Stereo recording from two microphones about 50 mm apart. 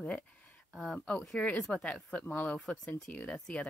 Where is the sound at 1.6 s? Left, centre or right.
Centre.